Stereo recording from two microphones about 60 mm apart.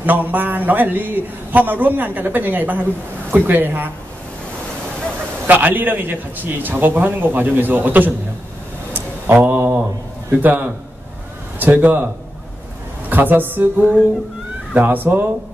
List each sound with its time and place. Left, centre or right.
0.0 s a man's voice: right
5.5 s a man's voice: right
8.9 s mantra: right
10.4 s a man's voice: right
13.1 s a man's voice: right